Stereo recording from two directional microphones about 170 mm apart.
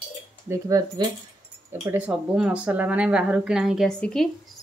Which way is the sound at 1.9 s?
10° right (ahead or behind).